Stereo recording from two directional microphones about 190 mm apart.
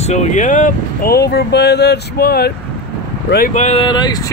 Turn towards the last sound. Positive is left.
turn(degrees=20)  # may be behind; listen again after turning